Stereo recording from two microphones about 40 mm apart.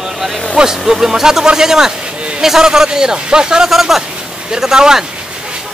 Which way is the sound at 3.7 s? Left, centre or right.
Centre.